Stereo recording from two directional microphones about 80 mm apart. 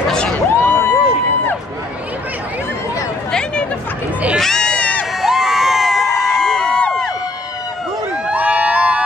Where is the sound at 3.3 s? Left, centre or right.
Centre.